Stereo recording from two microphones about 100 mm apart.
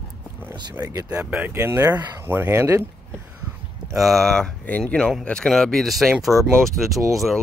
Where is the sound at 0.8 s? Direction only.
30° right (ahead or behind).